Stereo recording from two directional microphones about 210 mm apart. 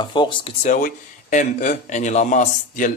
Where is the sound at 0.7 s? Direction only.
40° left (ahead or behind).